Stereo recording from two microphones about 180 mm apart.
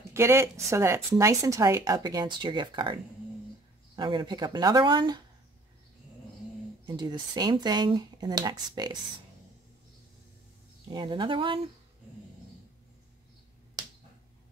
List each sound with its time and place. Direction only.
0.1 s speech: 15° right (ahead or behind)
6.9 s speech: 25° right (ahead or behind)
10.9 s speech: 25° right (ahead or behind)